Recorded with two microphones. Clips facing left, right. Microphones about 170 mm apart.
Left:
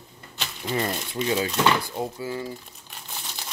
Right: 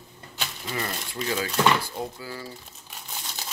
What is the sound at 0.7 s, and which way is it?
Speech, 25° left (ahead or behind).